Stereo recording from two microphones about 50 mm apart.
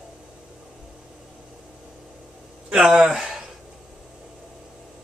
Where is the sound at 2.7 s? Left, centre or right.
Centre.